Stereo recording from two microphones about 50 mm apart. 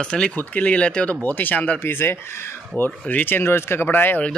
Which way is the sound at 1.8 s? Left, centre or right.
Left.